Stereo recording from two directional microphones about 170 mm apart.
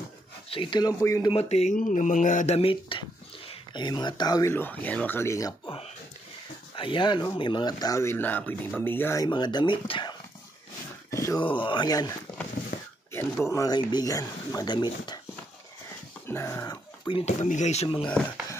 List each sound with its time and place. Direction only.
0.5 s speech: 30° left (ahead or behind)
1.3 s speech: 40° left (ahead or behind); by 5.5 s 15° left (ahead or behind)
6.7 s speech: 30° left (ahead or behind)
11.1 s a sound: 20° left (ahead or behind)
11.4 s speech: 30° left (ahead or behind)
12.7 s a sound: 65° left (ahead or behind)
13.1 s speech: 15° left (ahead or behind)
16.3 s speech: 15° left (ahead or behind)
17.2 s speech: 45° left (ahead or behind)
18.0 s speech: 5° left (ahead or behind)